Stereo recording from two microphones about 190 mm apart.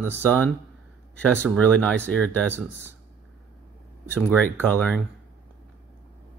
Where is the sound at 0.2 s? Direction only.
10° left (ahead or behind).